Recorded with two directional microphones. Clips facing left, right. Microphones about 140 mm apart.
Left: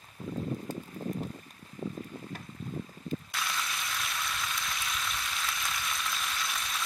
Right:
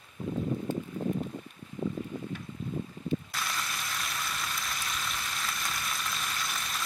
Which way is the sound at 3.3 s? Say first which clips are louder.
Even; centre (ahead or behind).